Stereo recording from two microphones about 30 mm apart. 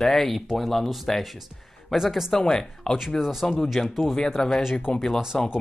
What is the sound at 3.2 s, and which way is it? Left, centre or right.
Speech, centre.